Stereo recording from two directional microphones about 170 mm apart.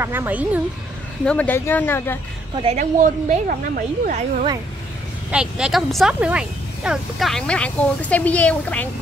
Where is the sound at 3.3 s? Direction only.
55° right (ahead or behind).